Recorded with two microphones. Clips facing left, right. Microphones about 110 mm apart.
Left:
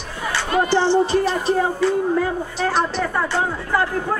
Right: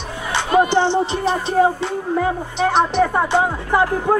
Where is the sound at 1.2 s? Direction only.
20° right (ahead or behind).